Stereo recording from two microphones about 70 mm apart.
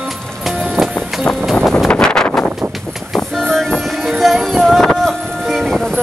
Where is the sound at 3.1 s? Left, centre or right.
Centre.